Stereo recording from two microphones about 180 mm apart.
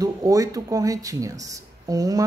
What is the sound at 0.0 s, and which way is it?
A woman's voice, 20° right (ahead or behind).